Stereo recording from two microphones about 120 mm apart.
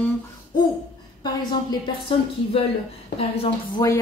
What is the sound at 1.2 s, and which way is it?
Speech, 35° left (ahead or behind).